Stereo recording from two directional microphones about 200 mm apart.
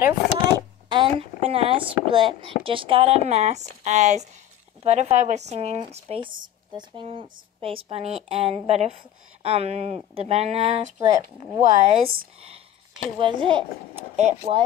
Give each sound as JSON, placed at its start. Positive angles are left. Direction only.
{"t": 0.0, "sound": "a sound", "side_deg": -20}
{"t": 2.6, "sound": "speech", "side_deg": -25}
{"t": 11.0, "sound": "speech", "side_deg": -15}
{"t": 13.2, "sound": "speech", "side_deg": -25}